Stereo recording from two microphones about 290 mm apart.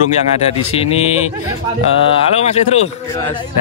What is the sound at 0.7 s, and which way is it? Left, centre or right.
Speech, left.